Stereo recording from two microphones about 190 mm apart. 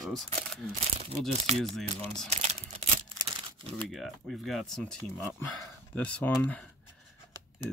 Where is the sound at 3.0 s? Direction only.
25° right (ahead or behind).